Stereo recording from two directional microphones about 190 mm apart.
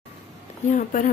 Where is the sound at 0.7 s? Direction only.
45° left (ahead or behind).